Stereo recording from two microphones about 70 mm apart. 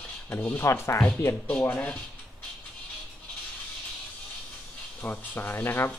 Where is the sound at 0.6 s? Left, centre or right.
Left.